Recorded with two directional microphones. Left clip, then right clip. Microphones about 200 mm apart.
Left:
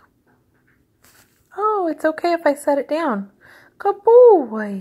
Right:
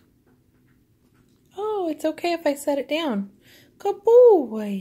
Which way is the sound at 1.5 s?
15° left (ahead or behind).